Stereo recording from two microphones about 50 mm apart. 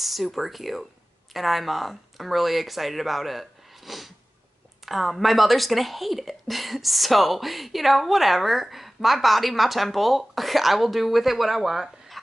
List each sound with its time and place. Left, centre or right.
0.0 s speech: centre